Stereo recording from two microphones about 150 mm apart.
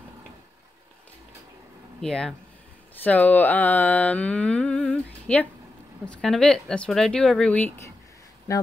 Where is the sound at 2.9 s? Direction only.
10° left (ahead or behind).